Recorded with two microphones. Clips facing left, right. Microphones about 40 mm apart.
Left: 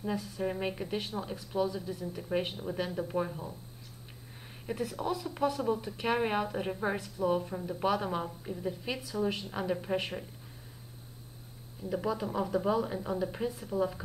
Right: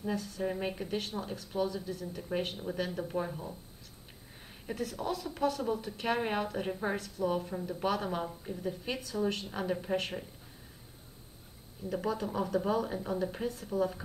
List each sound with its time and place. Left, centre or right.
0.0 s a woman's voice: centre
1.5 s speech: right
1.9 s a woman's voice: centre
4.6 s a woman's voice: centre
7.3 s a woman's voice: centre
11.8 s a woman's voice: centre